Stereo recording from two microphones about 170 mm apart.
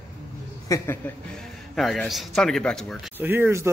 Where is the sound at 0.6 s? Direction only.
15° left (ahead or behind).